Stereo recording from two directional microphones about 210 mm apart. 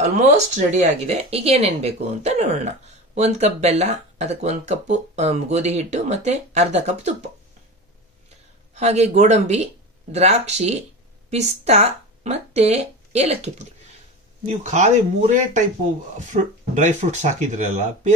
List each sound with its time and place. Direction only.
0.0 s speech: 35° right (ahead or behind)
8.7 s speech: 30° right (ahead or behind)